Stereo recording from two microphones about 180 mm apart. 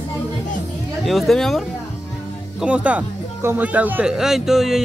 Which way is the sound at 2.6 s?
5° right (ahead or behind).